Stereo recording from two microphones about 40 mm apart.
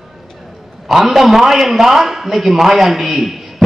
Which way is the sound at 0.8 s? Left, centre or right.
Centre.